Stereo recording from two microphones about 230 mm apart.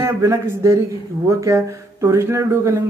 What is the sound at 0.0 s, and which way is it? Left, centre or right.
Speech, centre.